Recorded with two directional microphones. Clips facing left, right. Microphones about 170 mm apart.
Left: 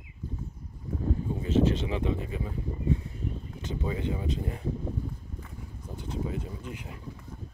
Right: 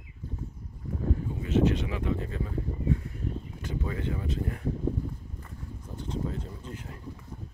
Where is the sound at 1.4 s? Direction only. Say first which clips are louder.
Even; 30° left (ahead or behind).